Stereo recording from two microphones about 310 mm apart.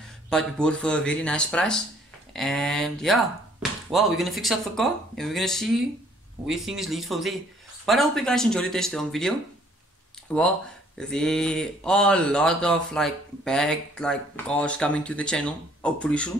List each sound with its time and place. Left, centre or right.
0.3 s speech: centre
10.3 s speech: centre